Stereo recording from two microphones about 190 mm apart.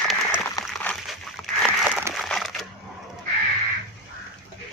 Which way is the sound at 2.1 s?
Centre (ahead or behind).